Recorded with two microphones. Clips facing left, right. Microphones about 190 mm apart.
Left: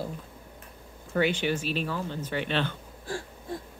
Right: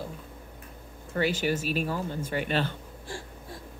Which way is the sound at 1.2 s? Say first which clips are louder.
Left 1 dB; 40° right (ahead or behind).